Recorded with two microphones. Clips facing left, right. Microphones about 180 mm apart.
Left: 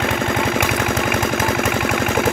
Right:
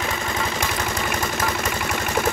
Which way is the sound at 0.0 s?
55° left (ahead or behind).